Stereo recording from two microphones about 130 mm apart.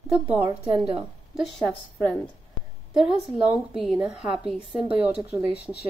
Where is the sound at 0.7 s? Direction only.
40° right (ahead or behind).